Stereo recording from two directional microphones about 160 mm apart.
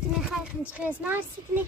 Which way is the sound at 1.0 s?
10° right (ahead or behind).